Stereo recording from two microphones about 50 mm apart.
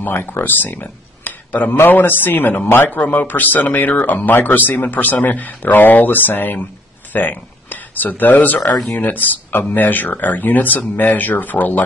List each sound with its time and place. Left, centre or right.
0.0 s speech: left